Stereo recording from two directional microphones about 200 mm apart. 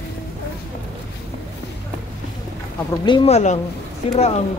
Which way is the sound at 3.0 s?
25° left (ahead or behind).